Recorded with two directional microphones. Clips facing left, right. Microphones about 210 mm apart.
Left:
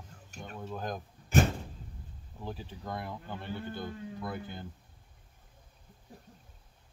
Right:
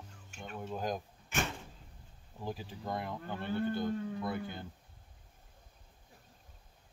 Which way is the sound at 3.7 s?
15° right (ahead or behind).